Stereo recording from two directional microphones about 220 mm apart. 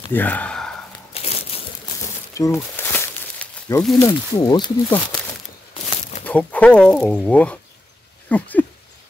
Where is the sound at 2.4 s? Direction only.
15° left (ahead or behind).